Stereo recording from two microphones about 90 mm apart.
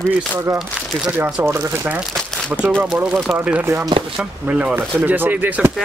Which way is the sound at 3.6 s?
25° right (ahead or behind).